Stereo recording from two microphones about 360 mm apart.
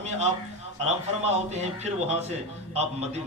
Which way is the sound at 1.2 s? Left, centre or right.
Centre.